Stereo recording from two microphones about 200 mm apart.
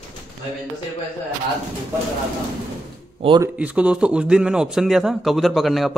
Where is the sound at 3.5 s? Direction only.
5° right (ahead or behind).